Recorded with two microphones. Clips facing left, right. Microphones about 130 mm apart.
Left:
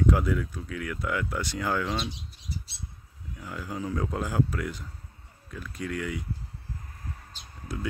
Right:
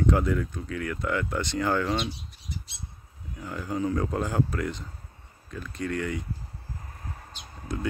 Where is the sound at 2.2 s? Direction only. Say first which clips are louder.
Even; 35° left (ahead or behind).